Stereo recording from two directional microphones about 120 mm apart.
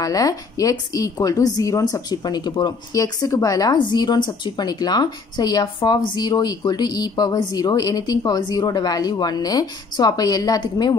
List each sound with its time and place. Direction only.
0.0 s a woman's voice: 30° left (ahead or behind)